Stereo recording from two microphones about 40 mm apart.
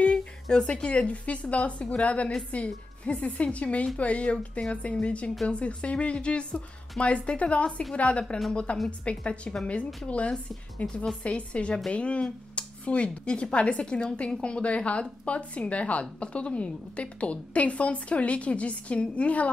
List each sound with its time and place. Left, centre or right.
0.0 s a woman's voice: left
11.2 s a woman's voice: left